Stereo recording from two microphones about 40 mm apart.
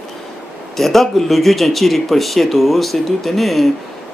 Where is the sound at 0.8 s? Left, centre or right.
Centre.